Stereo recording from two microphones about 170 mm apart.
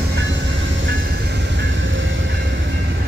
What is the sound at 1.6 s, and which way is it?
Vehicle, 90° right.